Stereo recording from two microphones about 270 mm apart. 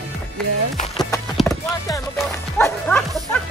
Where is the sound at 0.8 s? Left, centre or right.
Centre.